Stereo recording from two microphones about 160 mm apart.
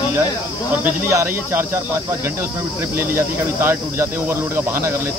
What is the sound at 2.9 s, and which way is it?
Speech, 15° right (ahead or behind).